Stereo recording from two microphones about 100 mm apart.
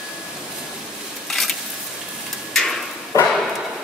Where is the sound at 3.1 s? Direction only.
35° left (ahead or behind).